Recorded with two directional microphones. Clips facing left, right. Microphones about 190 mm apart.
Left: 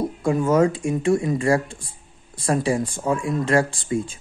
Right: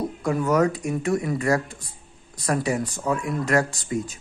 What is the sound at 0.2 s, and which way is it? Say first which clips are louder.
Speech: left 3 dB; 25° left (ahead or behind).